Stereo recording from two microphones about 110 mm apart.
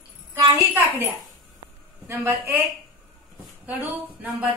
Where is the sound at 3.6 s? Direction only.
15° right (ahead or behind).